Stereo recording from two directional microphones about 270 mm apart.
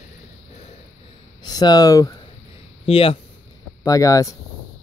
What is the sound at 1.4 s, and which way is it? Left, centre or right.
Speech, centre.